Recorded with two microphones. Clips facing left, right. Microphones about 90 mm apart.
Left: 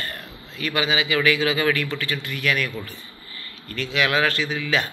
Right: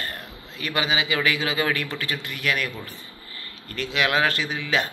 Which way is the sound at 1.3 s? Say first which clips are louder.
Left 3 dB; 35° right (ahead or behind).